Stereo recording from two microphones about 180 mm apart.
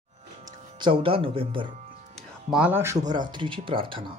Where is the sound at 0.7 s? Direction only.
25° right (ahead or behind).